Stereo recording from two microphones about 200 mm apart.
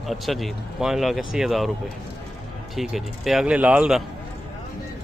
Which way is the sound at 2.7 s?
Centre (ahead or behind).